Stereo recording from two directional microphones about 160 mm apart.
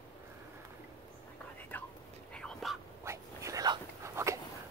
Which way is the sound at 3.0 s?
20° right (ahead or behind).